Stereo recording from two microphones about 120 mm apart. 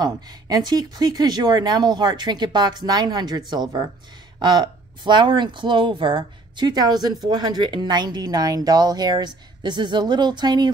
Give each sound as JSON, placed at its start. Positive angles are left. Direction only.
{"t": 0.0, "sound": "speech", "side_deg": -35}